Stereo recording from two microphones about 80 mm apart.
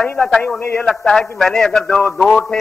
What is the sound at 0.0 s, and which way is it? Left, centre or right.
Speech, centre.